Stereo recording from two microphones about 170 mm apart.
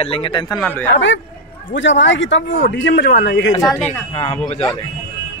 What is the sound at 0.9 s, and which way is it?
Speech, 90° left.